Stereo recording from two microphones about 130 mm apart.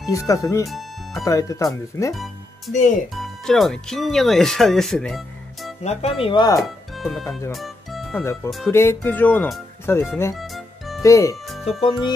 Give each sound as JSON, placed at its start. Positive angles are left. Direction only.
{"t": 0.1, "sound": "speech", "side_deg": 25}
{"t": 0.7, "sound": "music", "side_deg": 0}
{"t": 1.2, "sound": "speech", "side_deg": 25}
{"t": 2.7, "sound": "speech", "side_deg": 70}
{"t": 3.2, "sound": "speech", "side_deg": 0}
{"t": 5.9, "sound": "speech", "side_deg": 55}
{"t": 6.2, "sound": "speech", "side_deg": 35}
{"t": 6.6, "sound": "speech", "side_deg": 0}
{"t": 7.5, "sound": "music", "side_deg": 0}
{"t": 8.1, "sound": "speech", "side_deg": 20}
{"t": 10.3, "sound": "music", "side_deg": 0}
{"t": 11.0, "sound": "speech", "side_deg": 25}